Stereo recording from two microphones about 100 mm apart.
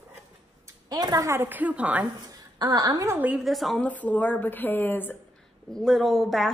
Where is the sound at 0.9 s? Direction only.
40° right (ahead or behind).